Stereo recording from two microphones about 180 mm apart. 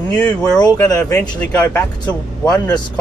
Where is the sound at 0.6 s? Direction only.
20° left (ahead or behind).